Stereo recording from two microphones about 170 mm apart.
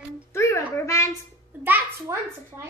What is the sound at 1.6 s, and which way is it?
Speech, 10° right (ahead or behind).